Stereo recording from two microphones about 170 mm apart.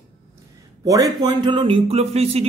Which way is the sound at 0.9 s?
20° right (ahead or behind).